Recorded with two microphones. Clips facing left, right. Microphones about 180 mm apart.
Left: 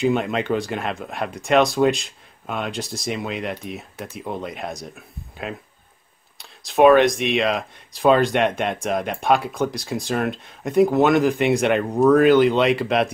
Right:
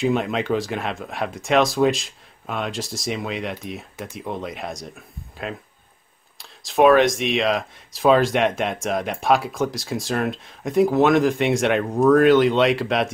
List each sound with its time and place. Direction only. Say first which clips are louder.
0.0 s speech: left 1 dB; centre (ahead or behind)